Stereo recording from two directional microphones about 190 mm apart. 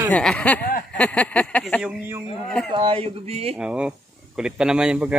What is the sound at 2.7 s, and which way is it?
Speech, 30° right (ahead or behind).